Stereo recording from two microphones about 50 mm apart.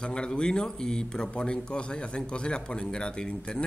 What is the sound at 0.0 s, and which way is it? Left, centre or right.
A man's voice, centre.